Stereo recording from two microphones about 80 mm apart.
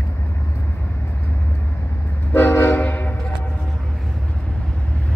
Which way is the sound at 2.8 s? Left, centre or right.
Centre.